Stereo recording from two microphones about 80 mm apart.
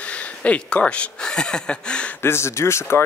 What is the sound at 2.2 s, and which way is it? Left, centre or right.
Speech, left.